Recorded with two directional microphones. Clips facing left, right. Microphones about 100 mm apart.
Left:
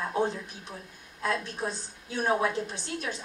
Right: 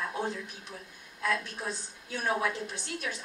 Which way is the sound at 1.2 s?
30° left (ahead or behind).